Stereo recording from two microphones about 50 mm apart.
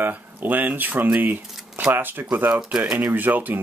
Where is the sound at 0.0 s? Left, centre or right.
Right.